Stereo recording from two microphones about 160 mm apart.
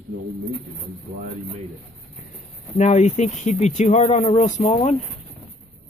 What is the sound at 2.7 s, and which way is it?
Speech, 45° left (ahead or behind).